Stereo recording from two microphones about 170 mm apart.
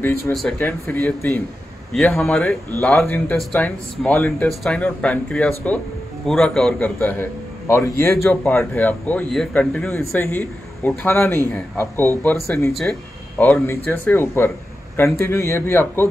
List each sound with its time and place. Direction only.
0.3 s speech: centre (ahead or behind)
0.6 s a man's voice: 10° left (ahead or behind)